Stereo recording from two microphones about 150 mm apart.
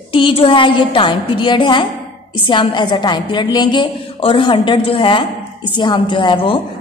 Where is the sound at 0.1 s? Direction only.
35° left (ahead or behind).